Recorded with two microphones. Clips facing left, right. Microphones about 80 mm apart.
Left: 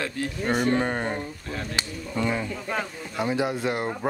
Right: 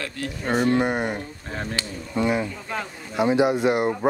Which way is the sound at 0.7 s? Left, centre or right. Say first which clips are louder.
Right 3 dB; centre.